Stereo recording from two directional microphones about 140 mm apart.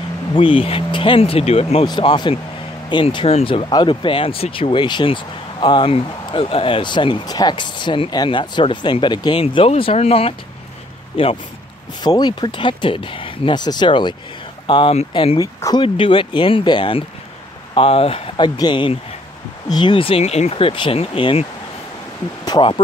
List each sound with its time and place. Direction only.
0.3 s speech: 40° left (ahead or behind)
1.9 s speech: 30° left (ahead or behind)
15.3 s speech: 25° left (ahead or behind)
15.8 s speech: 35° left (ahead or behind)